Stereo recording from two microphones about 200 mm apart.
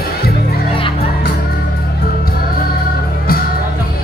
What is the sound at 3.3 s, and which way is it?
Music, 45° left (ahead or behind).